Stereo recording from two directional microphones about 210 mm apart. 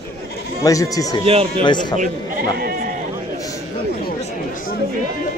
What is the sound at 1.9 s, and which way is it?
Speech, 45° right (ahead or behind).